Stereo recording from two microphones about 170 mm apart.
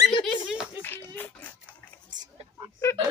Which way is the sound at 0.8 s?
15° left (ahead or behind).